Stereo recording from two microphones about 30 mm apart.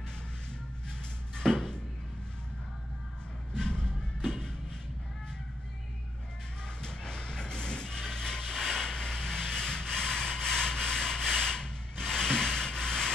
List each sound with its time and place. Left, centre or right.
1.3 s a sound: left
3.5 s music: left
6.8 s vehicle: left